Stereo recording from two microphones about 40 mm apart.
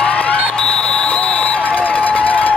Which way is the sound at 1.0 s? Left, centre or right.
Left.